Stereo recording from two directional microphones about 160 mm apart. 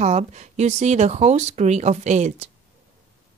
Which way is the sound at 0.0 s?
45° right (ahead or behind).